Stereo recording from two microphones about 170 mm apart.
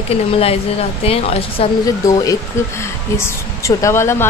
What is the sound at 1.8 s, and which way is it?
Speech, 20° left (ahead or behind).